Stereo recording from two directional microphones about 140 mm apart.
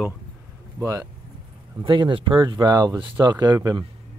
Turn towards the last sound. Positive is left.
turn(degrees=-30)  # may be behind; listen again after turning